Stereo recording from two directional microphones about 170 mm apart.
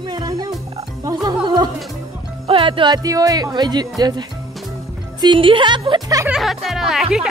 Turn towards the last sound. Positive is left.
turn(degrees=-5)  # may be behind; listen again after turning